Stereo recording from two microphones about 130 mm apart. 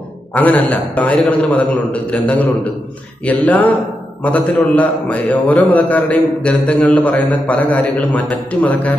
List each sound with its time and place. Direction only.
0.3 s a man's voice: 10° left (ahead or behind)